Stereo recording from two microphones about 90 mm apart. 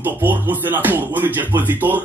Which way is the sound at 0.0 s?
20° right (ahead or behind).